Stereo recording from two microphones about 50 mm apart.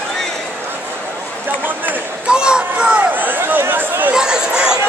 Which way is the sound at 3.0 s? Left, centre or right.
Right.